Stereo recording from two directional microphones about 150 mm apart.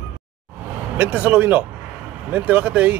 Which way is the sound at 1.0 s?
10° right (ahead or behind).